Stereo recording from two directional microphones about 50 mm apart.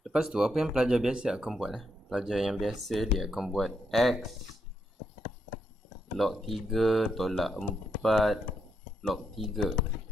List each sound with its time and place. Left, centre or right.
0.1 s speech: centre
1.5 s speech: centre
3.5 s speech: centre
6.1 s speech: centre